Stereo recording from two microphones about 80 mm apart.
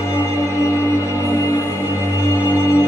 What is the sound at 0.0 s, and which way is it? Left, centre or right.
Music, left.